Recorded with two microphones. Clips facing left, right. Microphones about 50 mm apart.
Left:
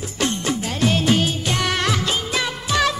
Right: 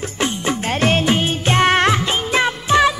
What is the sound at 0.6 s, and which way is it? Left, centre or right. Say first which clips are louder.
Music: right 5 dB; right.